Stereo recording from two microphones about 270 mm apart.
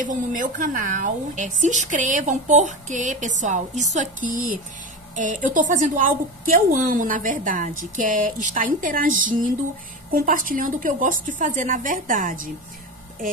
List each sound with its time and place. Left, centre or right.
0.0 s a woman's voice: right